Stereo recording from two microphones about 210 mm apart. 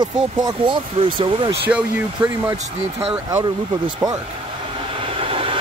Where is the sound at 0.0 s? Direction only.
20° right (ahead or behind).